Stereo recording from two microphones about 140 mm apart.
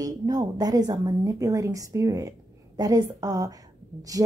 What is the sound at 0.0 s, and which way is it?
Speech, 25° right (ahead or behind).